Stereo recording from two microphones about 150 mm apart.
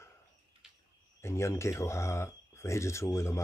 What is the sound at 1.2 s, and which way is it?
Speech, 15° left (ahead or behind).